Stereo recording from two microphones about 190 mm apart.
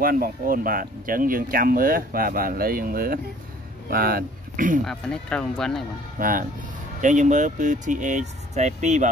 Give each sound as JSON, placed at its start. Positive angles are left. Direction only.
{"t": 0.0, "sound": "speech", "side_deg": -50}
{"t": 4.8, "sound": "speech", "side_deg": 5}
{"t": 6.1, "sound": "speech", "side_deg": -45}